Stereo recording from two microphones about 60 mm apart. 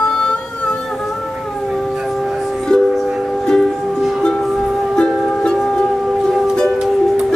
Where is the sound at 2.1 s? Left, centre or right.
Centre.